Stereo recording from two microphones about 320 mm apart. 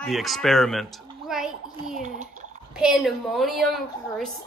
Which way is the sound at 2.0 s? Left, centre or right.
Right.